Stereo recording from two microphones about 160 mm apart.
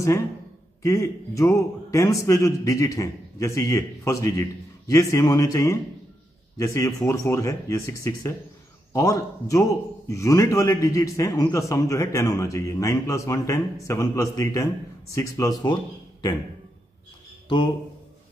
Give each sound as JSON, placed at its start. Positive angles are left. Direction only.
{"t": 0.8, "sound": "a man's voice", "side_deg": 20}